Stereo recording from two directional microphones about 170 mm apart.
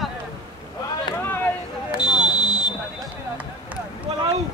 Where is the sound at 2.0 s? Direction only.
5° right (ahead or behind).